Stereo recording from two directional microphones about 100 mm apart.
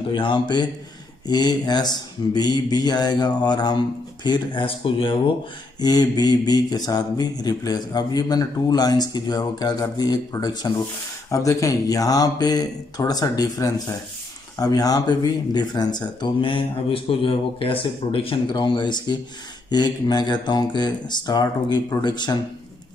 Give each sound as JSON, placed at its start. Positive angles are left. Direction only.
{"t": 0.1, "sound": "speech", "side_deg": 55}
{"t": 5.8, "sound": "mantra", "side_deg": 40}
{"t": 14.6, "sound": "speech", "side_deg": 40}
{"t": 18.5, "sound": "speech", "side_deg": 50}